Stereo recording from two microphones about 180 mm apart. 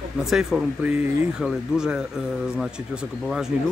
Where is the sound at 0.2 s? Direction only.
Centre (ahead or behind).